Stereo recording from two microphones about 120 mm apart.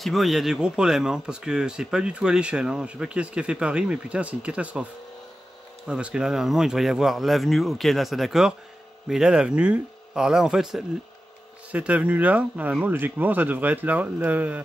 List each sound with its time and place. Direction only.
0.0 s speech: centre (ahead or behind)
5.9 s speech: 10° right (ahead or behind)